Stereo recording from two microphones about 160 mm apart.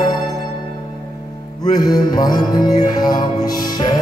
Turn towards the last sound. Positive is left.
turn(degrees=25)  # may be behind; listen again after turning